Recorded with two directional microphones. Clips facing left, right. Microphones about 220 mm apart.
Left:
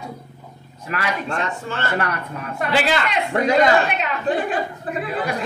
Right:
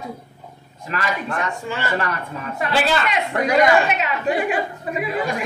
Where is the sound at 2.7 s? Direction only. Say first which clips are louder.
Even; 15° left (ahead or behind).